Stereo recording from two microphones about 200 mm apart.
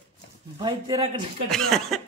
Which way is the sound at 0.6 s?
25° right (ahead or behind).